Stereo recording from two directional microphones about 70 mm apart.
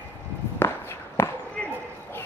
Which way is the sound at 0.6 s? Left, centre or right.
Left.